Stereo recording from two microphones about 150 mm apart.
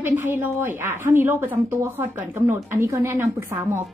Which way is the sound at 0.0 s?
15° right (ahead or behind).